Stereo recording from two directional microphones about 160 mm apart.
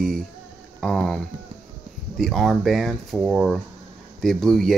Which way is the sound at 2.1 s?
Centre (ahead or behind).